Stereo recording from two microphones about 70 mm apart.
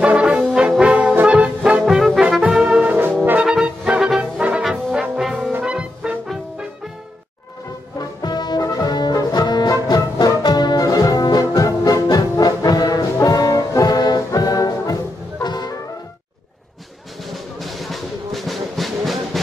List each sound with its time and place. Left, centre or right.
0.0 s brass instrument: centre
1.2 s music: centre
2.4 s brass instrument: centre
2.8 s brass instrument: right
3.4 s music: centre
4.2 s brass instrument: centre
5.6 s music: centre
8.2 s brass instrument: left
8.6 s music: left
9.8 s music: left
15.4 s music: left
17.3 s music: centre